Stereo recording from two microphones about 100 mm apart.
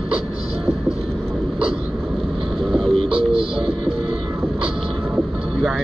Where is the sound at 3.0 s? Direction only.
70° right (ahead or behind).